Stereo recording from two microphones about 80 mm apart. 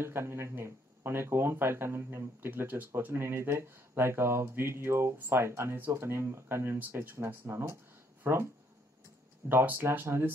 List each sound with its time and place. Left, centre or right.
0.0 s speech: right
9.5 s speech: right